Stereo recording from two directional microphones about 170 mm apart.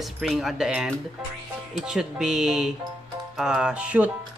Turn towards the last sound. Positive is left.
turn(degrees=-5)  # may be behind; listen again after turning